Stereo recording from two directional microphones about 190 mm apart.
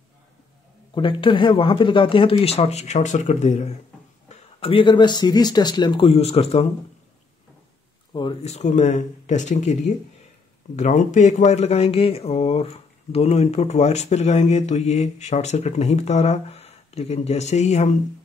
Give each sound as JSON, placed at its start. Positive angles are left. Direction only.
{"t": 0.9, "sound": "speech", "side_deg": 25}
{"t": 8.1, "sound": "speech", "side_deg": 25}
{"t": 8.5, "sound": "speech", "side_deg": 40}